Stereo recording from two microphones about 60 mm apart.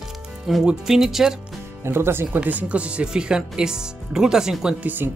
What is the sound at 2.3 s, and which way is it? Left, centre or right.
Speech, right.